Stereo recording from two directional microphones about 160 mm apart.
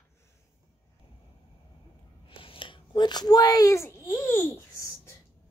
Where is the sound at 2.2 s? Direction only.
35° left (ahead or behind); by 5.1 s 15° left (ahead or behind).